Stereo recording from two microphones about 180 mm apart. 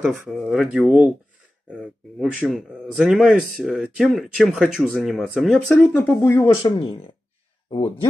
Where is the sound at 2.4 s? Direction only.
5° right (ahead or behind); by 6.7 s 15° left (ahead or behind).